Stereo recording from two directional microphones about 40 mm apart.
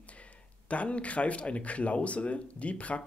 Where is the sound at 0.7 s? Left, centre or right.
Left.